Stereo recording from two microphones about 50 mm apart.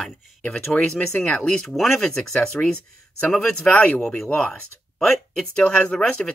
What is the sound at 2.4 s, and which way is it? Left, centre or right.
Speech, centre.